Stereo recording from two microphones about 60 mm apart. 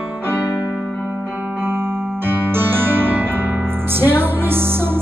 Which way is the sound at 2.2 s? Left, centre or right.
Right.